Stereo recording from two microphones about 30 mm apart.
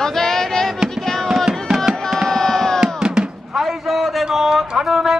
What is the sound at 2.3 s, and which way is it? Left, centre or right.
Crowd, centre.